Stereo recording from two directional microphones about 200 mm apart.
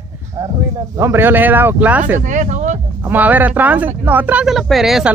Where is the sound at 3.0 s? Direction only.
10° right (ahead or behind).